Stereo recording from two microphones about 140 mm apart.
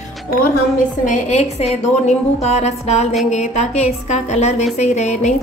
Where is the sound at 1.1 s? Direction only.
50° left (ahead or behind).